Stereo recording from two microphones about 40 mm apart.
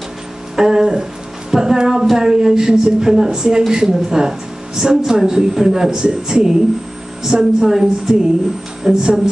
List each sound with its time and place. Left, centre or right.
0.6 s a woman's voice: centre